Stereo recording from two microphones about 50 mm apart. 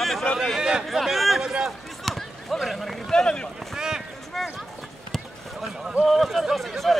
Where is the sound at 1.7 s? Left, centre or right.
Centre.